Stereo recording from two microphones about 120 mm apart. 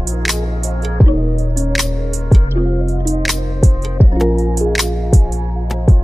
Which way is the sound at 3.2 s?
Centre (ahead or behind).